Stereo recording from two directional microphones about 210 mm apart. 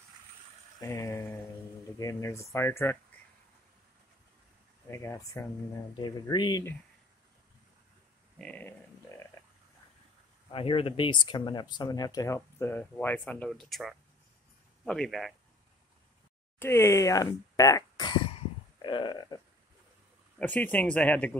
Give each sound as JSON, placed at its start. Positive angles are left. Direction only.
{"t": 0.7, "sound": "a sound", "side_deg": 15}
{"t": 2.0, "sound": "speech", "side_deg": 15}
{"t": 4.9, "sound": "speech", "side_deg": 15}
{"t": 8.4, "sound": "a sound", "side_deg": 5}
{"t": 10.5, "sound": "speech", "side_deg": 25}
{"t": 16.5, "sound": "speech", "side_deg": 10}
{"t": 20.3, "sound": "speech", "side_deg": 5}